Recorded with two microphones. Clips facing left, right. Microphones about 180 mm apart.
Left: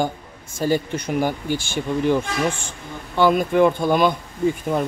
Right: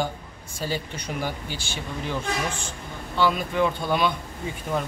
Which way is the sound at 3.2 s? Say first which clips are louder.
Left 7 dB; 50° left (ahead or behind).